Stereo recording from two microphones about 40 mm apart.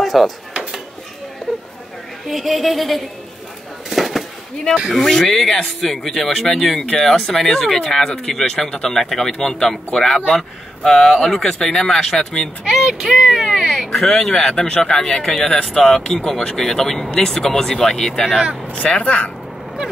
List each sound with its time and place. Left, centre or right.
0.0 s drawer open or close: centre
2.2 s a woman's voice: centre
3.9 s a sound: centre
4.9 s speech: centre
12.6 s speech: centre
13.8 s speech: centre
18.7 s speech: left